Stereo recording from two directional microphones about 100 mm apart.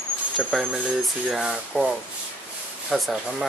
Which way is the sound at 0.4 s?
10° right (ahead or behind).